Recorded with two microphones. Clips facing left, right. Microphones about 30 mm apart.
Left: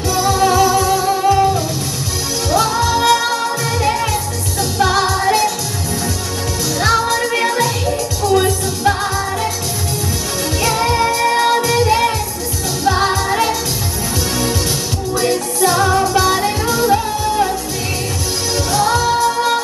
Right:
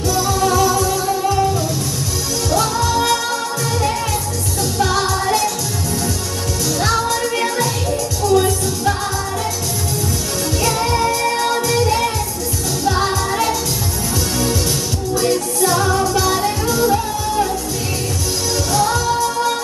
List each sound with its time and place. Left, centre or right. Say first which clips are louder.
0.1 s music: left 3 dB; centre
6.8 s music: left 4 dB; centre
10.6 s music: left 2 dB; centre
15.1 s music: left 1 dB; centre
18.7 s music: left 3 dB; centre